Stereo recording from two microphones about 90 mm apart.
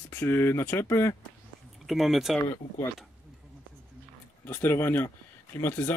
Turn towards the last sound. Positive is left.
turn(degrees=20)  # may be behind; listen again after turning